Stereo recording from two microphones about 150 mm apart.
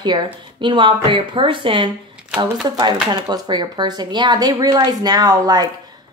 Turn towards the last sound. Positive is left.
turn(degrees=-25)  # may be behind; listen again after turning